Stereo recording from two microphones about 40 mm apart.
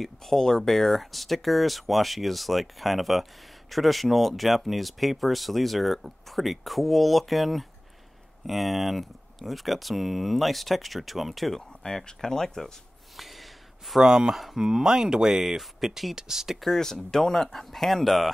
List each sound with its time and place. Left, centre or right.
0.0 s speech: centre
14.0 s speech: centre
14.3 s speech: centre
14.6 s speech: centre
16.6 s speech: centre